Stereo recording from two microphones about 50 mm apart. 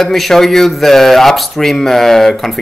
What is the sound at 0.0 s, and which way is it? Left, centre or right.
Speech, centre.